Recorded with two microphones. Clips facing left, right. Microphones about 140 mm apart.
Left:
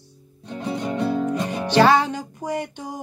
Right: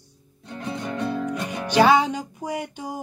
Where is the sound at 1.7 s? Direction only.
10° right (ahead or behind).